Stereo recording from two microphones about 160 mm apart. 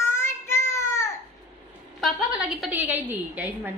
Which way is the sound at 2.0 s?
Centre (ahead or behind).